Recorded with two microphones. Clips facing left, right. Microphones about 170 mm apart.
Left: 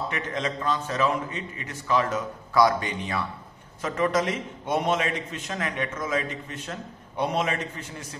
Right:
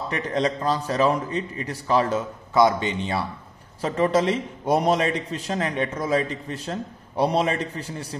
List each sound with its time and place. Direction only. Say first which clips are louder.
0.1 s a man's voice: right 6 dB; 35° right (ahead or behind)